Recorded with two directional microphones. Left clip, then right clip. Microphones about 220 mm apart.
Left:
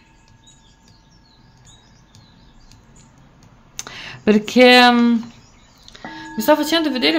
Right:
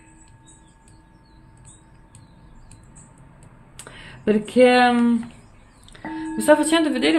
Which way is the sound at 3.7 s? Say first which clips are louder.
Left 9 dB; 25° left (ahead or behind).